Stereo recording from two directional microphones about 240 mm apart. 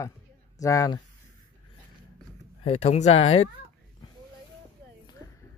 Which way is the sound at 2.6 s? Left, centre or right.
Left.